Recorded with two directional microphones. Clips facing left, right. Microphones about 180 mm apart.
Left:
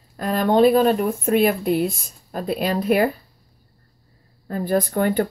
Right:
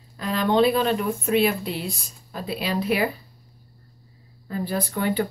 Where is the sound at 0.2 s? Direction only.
45° left (ahead or behind).